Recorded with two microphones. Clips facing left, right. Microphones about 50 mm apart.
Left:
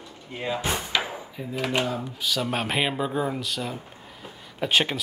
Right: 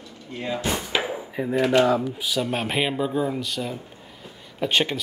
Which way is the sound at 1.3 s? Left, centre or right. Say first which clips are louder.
Right 9 dB; right.